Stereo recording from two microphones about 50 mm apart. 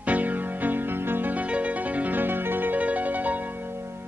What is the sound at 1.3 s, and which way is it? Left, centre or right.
Music, right.